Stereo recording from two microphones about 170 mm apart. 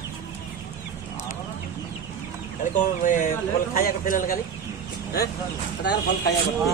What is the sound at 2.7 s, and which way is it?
A man's voice, 50° left (ahead or behind).